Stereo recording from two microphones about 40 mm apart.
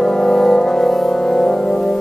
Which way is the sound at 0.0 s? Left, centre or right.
Centre.